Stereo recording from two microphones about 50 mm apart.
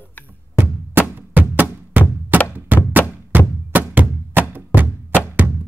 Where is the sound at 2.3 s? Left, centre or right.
Right.